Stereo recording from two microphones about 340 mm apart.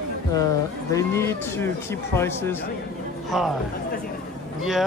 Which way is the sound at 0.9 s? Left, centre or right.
Centre.